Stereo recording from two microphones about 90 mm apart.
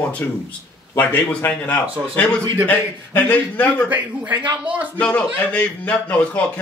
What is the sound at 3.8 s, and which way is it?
Speech, 20° right (ahead or behind).